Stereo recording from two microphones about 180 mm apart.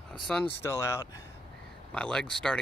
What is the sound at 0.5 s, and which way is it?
Speech, 15° left (ahead or behind).